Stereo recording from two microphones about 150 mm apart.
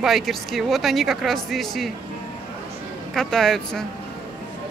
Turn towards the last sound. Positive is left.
turn(degrees=5)  # may be behind; listen again after turning